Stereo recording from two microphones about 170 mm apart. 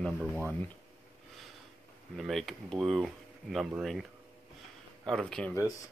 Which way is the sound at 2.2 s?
Centre (ahead or behind).